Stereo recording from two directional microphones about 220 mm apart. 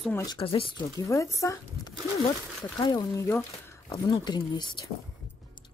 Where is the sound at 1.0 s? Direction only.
15° left (ahead or behind).